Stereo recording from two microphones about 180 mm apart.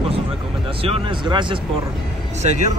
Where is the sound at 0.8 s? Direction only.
30° right (ahead or behind).